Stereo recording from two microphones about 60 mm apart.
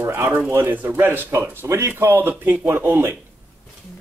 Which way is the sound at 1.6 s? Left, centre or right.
Right.